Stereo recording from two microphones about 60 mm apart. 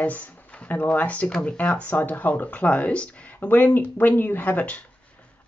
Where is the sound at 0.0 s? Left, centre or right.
Left.